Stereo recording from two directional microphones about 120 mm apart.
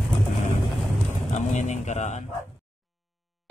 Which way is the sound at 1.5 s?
80° left.